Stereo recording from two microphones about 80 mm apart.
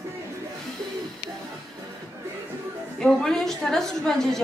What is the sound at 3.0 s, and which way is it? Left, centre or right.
A woman's voice, centre.